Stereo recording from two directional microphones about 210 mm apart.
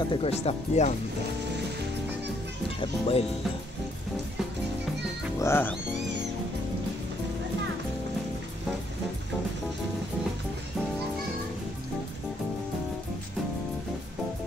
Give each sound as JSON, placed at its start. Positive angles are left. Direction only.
{"t": 0.1, "sound": "speech", "side_deg": 30}
{"t": 2.8, "sound": "speech", "side_deg": 25}
{"t": 5.4, "sound": "speech", "side_deg": 10}